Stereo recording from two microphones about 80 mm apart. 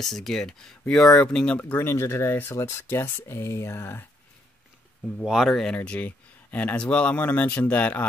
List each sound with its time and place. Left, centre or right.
0.0 s speech: centre
1.6 s speech: left
5.2 s speech: centre
5.6 s speech: centre